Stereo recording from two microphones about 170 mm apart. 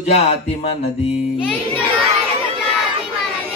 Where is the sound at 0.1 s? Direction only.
35° left (ahead or behind).